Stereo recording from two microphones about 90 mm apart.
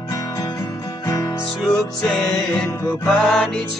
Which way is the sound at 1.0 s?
40° left (ahead or behind).